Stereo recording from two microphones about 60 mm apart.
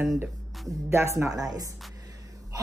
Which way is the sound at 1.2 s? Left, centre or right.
Right.